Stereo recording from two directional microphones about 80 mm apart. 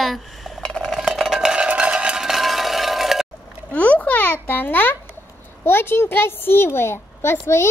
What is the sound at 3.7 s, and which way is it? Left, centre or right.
A woman's voice, centre.